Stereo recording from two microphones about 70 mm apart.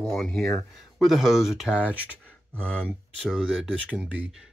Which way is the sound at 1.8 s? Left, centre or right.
Centre.